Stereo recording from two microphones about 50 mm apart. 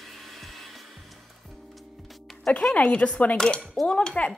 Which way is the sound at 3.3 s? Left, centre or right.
Centre.